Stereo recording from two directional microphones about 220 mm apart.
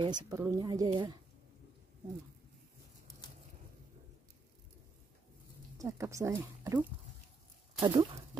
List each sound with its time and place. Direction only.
0.0 s speech: 20° right (ahead or behind)
5.8 s speech: 15° right (ahead or behind)